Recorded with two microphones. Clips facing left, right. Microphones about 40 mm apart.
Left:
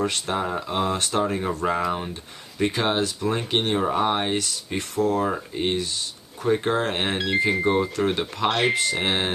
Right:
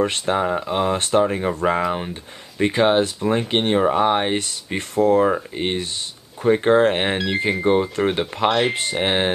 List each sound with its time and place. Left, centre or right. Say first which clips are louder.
0.0 s speech: right 5 dB; right
0.4 s speech: right 3 dB; right
0.9 s speech: right 6 dB; right
1.2 s speech: right 4 dB; right
8.5 s speech: right 3 dB; centre
9.0 s speech: right 4 dB; right